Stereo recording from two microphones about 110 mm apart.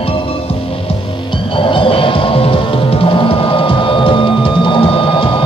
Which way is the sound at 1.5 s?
50° left (ahead or behind).